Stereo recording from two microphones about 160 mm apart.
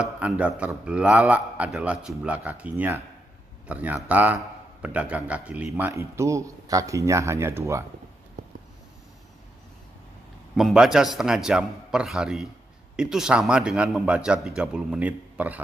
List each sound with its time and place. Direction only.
0.2 s speech: 10° right (ahead or behind)
10.5 s a man's voice: centre (ahead or behind)